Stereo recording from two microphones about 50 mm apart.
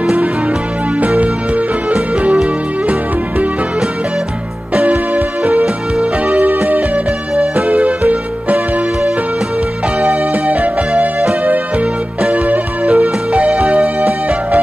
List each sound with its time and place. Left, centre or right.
0.0 s music: right
2.3 s music: right
4.7 s music: right
9.9 s music: right
12.2 s music: right